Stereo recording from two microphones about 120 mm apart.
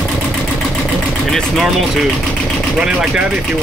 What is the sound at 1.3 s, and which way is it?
Speech, centre (ahead or behind).